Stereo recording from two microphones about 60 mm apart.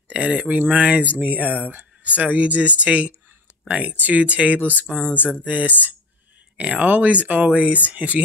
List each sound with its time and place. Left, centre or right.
0.1 s speech: centre
4.6 s speech: left
5.1 s a sound: left
5.4 s speech: right